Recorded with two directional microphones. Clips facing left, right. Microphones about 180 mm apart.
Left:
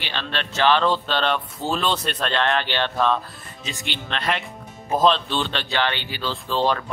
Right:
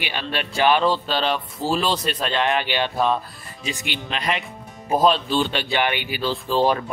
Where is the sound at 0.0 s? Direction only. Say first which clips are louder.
Right 2 dB; 10° right (ahead or behind).